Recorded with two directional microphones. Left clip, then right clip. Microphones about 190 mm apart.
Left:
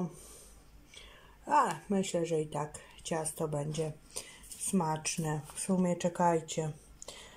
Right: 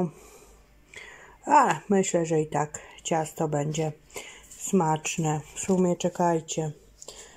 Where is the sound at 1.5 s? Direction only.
20° right (ahead or behind).